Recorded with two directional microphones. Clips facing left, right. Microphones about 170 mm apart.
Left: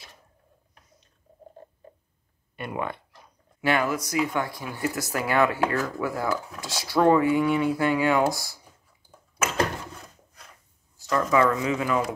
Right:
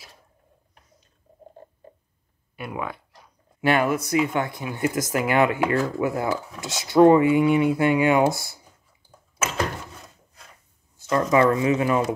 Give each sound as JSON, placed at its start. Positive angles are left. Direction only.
{"t": 2.5, "sound": "speech", "side_deg": -5}
{"t": 3.7, "sound": "speech", "side_deg": -25}
{"t": 11.1, "sound": "speech", "side_deg": -25}